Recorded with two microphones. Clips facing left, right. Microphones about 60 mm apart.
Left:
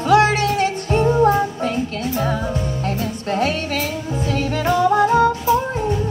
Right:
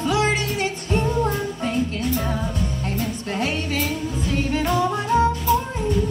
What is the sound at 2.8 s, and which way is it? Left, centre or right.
Music, left.